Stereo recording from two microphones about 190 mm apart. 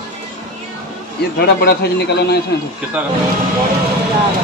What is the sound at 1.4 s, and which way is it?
Speech, 55° left (ahead or behind).